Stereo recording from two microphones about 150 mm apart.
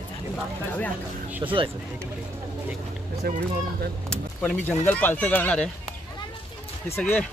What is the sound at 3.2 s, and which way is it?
Speech, 90° right.